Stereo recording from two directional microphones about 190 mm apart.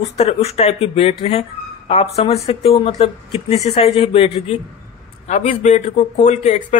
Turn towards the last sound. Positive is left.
turn(degrees=40)  # may be behind; listen again after turning